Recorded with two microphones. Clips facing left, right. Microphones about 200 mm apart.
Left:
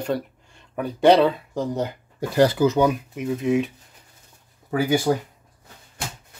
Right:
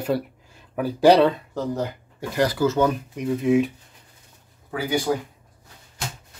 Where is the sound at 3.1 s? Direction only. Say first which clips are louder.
Right 2 dB; centre (ahead or behind).